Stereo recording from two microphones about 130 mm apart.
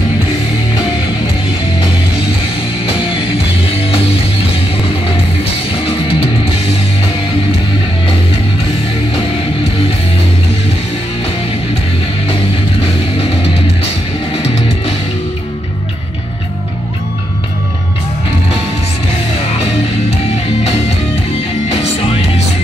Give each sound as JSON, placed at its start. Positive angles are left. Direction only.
{"t": 5.4, "sound": "music", "side_deg": 45}